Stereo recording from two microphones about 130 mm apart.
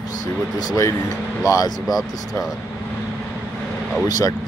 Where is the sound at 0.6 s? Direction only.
25° left (ahead or behind).